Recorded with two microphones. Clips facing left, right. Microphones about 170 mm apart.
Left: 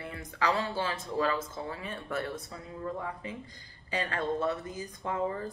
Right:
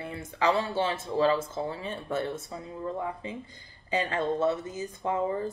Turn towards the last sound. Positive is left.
turn(degrees=-25)  # may be behind; listen again after turning